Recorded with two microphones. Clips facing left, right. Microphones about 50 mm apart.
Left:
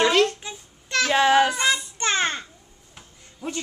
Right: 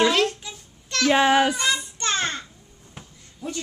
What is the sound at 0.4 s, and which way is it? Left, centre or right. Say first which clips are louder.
Babbling: left 2 dB; left.